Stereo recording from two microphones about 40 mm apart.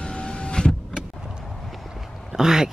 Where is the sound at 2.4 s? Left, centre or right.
Centre.